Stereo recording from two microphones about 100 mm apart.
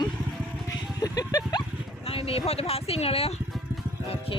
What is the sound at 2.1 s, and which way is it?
Speech, 70° left (ahead or behind).